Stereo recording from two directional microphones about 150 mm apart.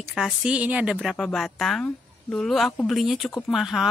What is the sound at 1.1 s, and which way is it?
A woman's voice, 5° left (ahead or behind).